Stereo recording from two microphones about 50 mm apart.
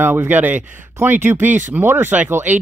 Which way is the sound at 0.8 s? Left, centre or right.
Right.